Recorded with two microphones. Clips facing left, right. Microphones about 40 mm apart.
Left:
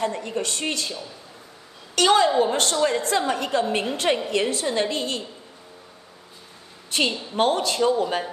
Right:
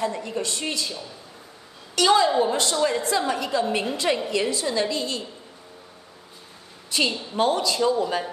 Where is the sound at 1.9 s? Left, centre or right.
Left.